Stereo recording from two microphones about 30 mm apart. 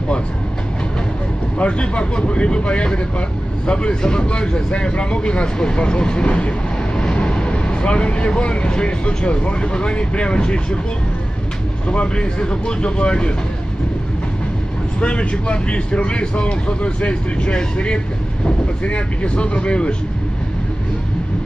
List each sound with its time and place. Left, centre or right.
1.6 s speech: left
12.2 s speech: left
15.0 s speech: left